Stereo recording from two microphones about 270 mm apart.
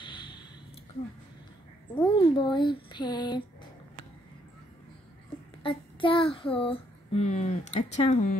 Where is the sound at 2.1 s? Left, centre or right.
Centre.